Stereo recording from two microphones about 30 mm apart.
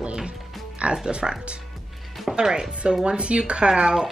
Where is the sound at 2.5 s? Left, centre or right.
Right.